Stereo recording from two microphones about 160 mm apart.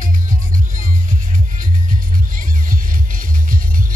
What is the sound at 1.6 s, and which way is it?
Music, 55° right (ahead or behind).